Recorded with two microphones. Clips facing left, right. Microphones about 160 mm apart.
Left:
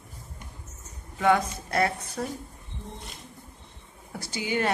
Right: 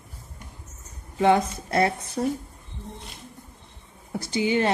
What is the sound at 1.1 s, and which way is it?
A woman's voice, 25° right (ahead or behind).